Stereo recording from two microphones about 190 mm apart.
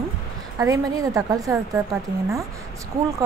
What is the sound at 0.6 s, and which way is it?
Speech, 15° right (ahead or behind).